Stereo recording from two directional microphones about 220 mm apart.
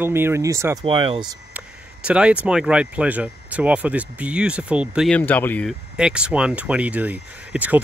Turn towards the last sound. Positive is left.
turn(degrees=-5)  # may be behind; listen again after turning